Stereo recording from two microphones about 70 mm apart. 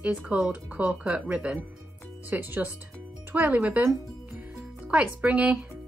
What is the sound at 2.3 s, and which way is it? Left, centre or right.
Speech, right.